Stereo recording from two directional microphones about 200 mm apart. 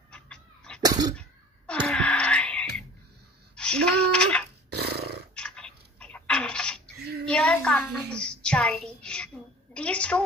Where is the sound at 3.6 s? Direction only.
5° left (ahead or behind).